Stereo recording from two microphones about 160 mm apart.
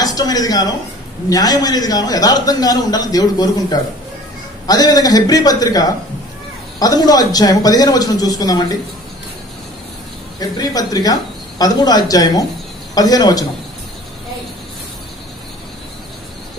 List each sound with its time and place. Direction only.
0.0 s a man's voice: 25° left (ahead or behind)
10.4 s a man's voice: 25° left (ahead or behind)